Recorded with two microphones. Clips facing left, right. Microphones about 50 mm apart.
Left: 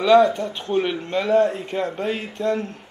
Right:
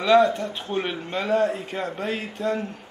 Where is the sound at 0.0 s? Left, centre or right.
Centre.